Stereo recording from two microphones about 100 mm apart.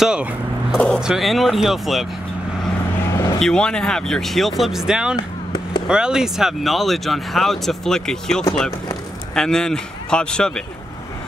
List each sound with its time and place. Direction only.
0.0 s speech: 5° right (ahead or behind)
0.7 s speech: 10° left (ahead or behind)
1.0 s speech: centre (ahead or behind)
3.1 s vehicle: 30° left (ahead or behind)
3.3 s speech: 5° left (ahead or behind)
5.1 s chop: 55° left (ahead or behind)
5.9 s speech: 10° right (ahead or behind); by 10.6 s 10° left (ahead or behind)